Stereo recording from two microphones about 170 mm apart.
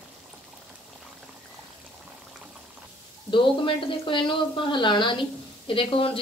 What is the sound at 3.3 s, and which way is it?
A woman's voice, 30° left (ahead or behind).